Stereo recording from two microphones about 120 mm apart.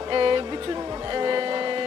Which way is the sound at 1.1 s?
35° right (ahead or behind).